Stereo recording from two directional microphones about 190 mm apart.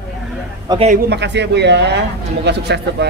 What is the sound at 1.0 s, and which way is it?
Speech, 65° right (ahead or behind).